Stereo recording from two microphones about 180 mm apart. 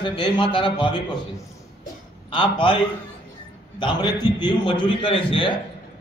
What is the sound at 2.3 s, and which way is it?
Speech, 30° left (ahead or behind).